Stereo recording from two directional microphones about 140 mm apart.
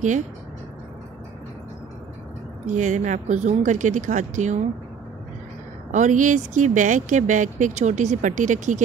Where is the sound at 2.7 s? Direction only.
60° right (ahead or behind).